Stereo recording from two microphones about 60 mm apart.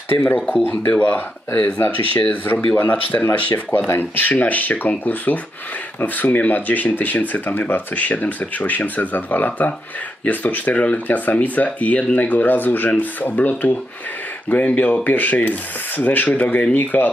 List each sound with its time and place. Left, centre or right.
0.3 s speech: left
2.5 s speech: left
2.8 s speech: left